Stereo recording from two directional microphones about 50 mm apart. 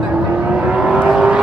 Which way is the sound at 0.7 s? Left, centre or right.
Centre.